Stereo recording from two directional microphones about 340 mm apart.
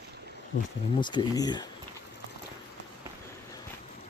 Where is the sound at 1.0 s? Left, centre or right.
Centre.